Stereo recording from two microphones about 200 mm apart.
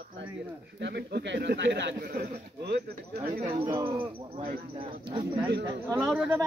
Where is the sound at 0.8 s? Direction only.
55° right (ahead or behind).